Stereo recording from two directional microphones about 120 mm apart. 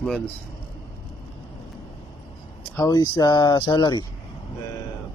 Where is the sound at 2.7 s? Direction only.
35° left (ahead or behind).